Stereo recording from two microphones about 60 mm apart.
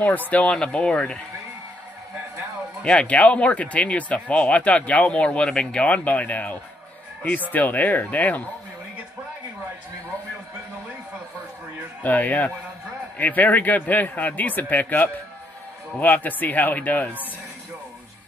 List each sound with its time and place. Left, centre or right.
0.3 s speech: left
2.8 s speech: centre
12.0 s speech: left